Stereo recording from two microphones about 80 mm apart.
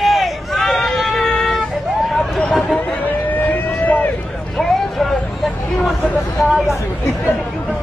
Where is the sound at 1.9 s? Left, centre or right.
Centre.